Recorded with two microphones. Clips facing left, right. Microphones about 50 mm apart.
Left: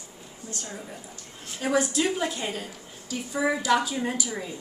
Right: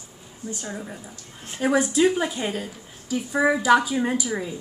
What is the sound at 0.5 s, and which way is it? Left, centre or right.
A woman's voice, centre.